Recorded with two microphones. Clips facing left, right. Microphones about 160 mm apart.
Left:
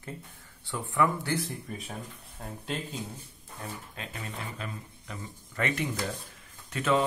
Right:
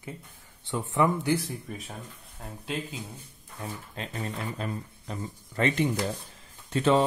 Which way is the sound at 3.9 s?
35° right (ahead or behind).